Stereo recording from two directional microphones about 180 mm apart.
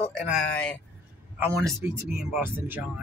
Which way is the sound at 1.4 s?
15° right (ahead or behind).